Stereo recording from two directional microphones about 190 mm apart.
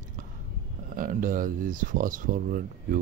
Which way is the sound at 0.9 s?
45° right (ahead or behind).